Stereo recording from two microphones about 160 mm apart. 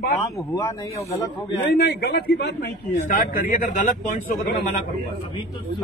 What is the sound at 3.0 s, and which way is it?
A man's voice, 55° left (ahead or behind).